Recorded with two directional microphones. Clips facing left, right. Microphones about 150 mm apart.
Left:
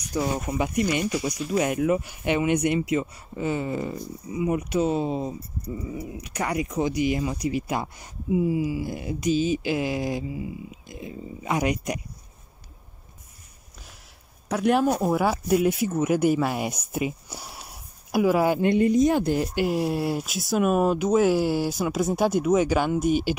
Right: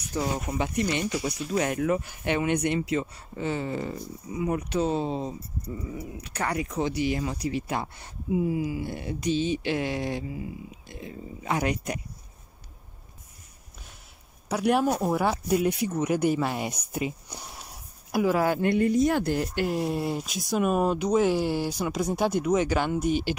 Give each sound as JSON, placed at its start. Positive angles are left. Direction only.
{"t": 0.1, "sound": "speech", "side_deg": 10}
{"t": 7.3, "sound": "speech", "side_deg": -30}
{"t": 7.6, "sound": "speech", "side_deg": 10}
{"t": 14.5, "sound": "speech", "side_deg": -5}